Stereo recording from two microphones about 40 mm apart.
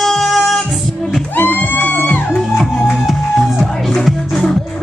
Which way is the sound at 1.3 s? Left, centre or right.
Left.